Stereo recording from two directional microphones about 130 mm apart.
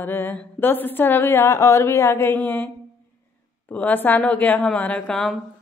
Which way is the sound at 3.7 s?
10° left (ahead or behind).